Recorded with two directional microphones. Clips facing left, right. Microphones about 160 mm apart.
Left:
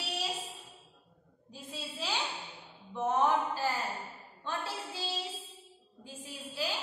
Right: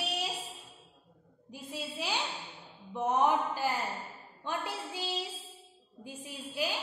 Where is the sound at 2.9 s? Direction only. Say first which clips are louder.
Right 1 dB; 15° right (ahead or behind).